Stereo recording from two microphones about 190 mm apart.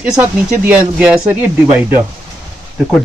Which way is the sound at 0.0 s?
5° right (ahead or behind).